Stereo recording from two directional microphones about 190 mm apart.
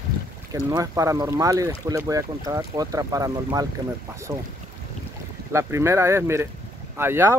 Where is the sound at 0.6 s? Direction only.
15° right (ahead or behind).